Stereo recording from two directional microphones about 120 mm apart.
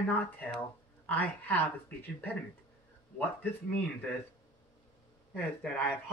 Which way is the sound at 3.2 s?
15° left (ahead or behind).